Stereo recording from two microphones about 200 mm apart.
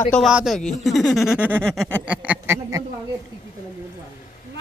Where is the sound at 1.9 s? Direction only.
10° right (ahead or behind).